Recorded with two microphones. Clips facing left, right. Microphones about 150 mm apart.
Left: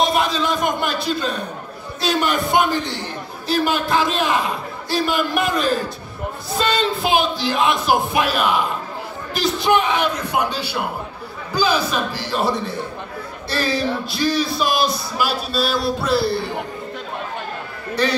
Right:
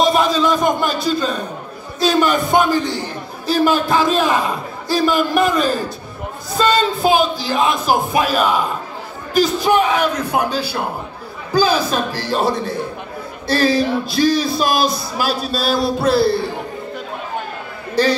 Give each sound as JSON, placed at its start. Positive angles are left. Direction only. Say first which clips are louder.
{"t": 0.0, "sound": "speech", "louder": "right 4 dB", "side_deg": -40}